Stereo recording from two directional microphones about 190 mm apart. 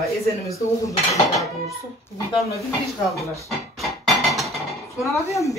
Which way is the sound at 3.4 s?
Centre (ahead or behind).